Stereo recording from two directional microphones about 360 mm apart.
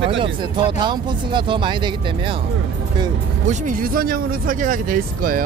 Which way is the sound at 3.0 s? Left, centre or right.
Right.